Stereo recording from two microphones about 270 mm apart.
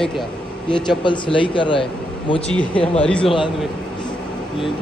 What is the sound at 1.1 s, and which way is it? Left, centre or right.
Speech, centre.